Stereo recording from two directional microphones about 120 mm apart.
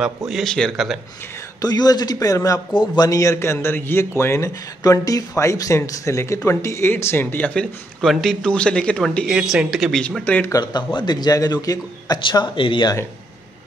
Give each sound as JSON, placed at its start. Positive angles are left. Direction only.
{"t": 0.3, "sound": "speech", "side_deg": 5}
{"t": 1.6, "sound": "speech", "side_deg": 30}
{"t": 8.0, "sound": "speech", "side_deg": 0}
{"t": 9.3, "sound": "speech", "side_deg": -5}
{"t": 10.5, "sound": "speech", "side_deg": 35}